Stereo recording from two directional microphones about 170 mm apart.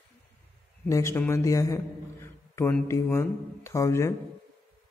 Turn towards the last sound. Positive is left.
turn(degrees=15)  # may be behind; listen again after turning